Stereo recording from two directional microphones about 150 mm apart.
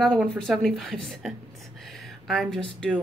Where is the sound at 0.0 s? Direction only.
5° left (ahead or behind).